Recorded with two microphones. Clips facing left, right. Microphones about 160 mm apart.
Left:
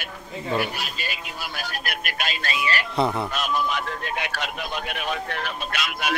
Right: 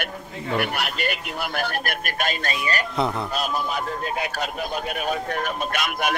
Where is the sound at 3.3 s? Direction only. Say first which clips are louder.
Even; 35° right (ahead or behind).